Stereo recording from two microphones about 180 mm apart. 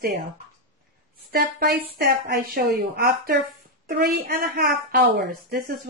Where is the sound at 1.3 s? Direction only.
55° right (ahead or behind).